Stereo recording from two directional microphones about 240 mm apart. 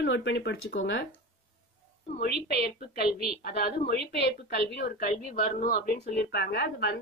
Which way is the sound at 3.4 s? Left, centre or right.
Left.